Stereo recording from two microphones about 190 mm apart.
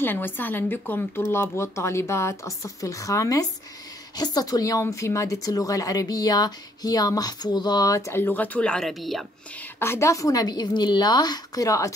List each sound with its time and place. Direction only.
0.0 s speech: 10° left (ahead or behind)
9.8 s a woman's voice: 15° left (ahead or behind)